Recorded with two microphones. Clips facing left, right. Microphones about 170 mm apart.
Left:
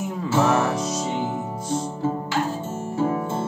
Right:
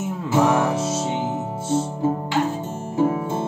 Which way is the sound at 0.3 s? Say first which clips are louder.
Right 2 dB; 15° right (ahead or behind).